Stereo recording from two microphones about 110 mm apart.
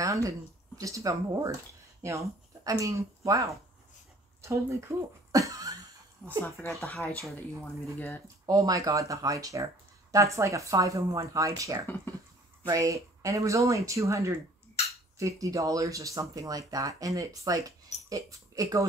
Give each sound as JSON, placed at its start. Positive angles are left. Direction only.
{"t": 0.0, "sound": "a sound", "side_deg": -30}
{"t": 0.7, "sound": "speech", "side_deg": -30}
{"t": 6.2, "sound": "speech", "side_deg": 15}
{"t": 8.5, "sound": "speech", "side_deg": -35}